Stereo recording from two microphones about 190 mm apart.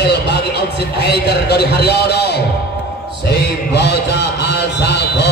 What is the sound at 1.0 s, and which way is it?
Music, 60° left (ahead or behind).